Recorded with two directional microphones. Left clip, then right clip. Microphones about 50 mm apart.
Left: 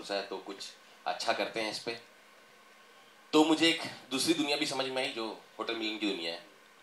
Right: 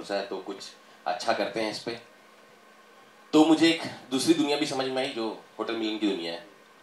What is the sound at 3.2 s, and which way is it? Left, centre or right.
Speech, left.